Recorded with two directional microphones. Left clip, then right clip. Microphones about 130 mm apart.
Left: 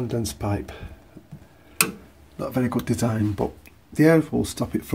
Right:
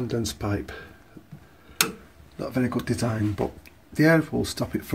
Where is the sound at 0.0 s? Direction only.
Centre (ahead or behind).